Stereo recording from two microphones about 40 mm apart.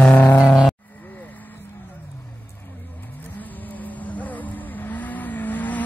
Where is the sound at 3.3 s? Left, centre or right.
Left.